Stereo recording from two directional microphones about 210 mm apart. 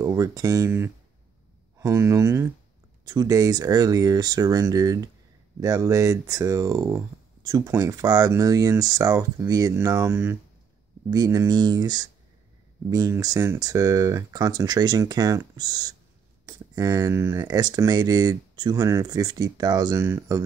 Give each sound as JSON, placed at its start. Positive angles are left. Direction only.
{"t": 0.0, "sound": "speech", "side_deg": -15}